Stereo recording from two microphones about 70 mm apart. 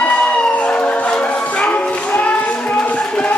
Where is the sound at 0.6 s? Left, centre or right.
Centre.